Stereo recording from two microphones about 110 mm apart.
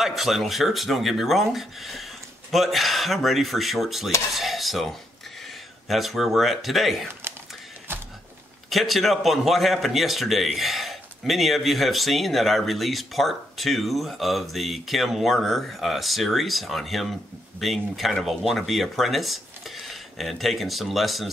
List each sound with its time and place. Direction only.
0.0 s a man's voice: centre (ahead or behind)
4.3 s cutlery: centre (ahead or behind)
5.9 s a man's voice: centre (ahead or behind)
7.9 s a sound: 20° right (ahead or behind)
8.6 s a man's voice: centre (ahead or behind)